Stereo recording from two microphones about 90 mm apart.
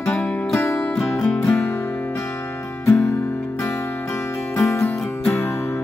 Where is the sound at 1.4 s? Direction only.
30° left (ahead or behind).